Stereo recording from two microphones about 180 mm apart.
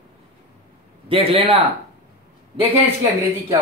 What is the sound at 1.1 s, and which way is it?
Speech, 30° right (ahead or behind).